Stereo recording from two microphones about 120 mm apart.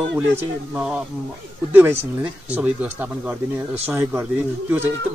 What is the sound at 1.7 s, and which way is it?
Speech, 15° right (ahead or behind).